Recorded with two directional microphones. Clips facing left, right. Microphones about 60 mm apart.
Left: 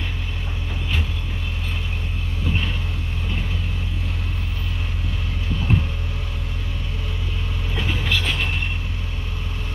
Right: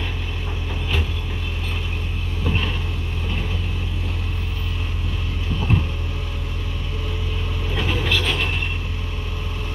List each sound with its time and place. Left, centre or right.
8.0 s vehicle: centre